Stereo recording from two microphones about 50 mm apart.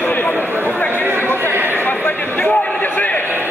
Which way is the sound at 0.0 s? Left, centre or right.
Left.